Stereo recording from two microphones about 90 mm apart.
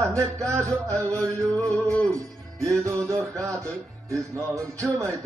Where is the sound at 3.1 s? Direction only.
35° right (ahead or behind).